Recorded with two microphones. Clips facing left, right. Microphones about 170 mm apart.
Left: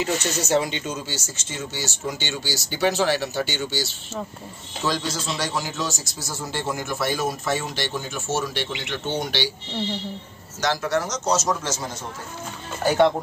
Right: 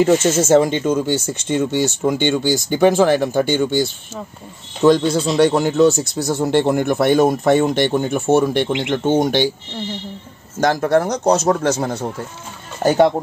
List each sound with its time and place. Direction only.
0.4 s a man's voice: 45° right (ahead or behind)
10.6 s a man's voice: 50° right (ahead or behind)
12.8 s speech: 40° right (ahead or behind)